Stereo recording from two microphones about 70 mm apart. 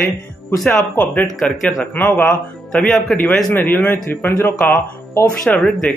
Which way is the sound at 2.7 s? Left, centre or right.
Centre.